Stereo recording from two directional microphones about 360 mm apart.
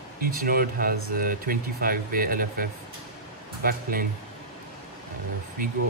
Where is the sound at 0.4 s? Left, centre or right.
Right.